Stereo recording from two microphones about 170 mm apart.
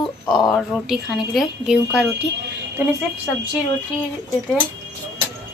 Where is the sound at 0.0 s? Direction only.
25° left (ahead or behind).